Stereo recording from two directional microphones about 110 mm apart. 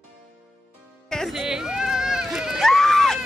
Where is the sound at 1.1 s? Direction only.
Centre (ahead or behind).